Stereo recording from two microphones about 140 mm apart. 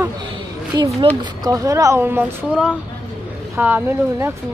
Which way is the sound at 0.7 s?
25° right (ahead or behind).